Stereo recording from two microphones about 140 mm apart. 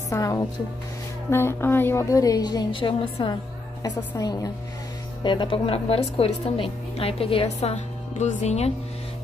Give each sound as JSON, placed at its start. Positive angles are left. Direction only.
{"t": 0.1, "sound": "a woman's voice", "side_deg": 25}
{"t": 4.2, "sound": "a woman's voice", "side_deg": 25}